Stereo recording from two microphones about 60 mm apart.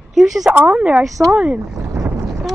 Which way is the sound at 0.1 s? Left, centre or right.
Centre.